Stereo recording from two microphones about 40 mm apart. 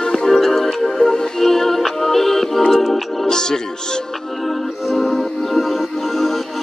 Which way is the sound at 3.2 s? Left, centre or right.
Centre.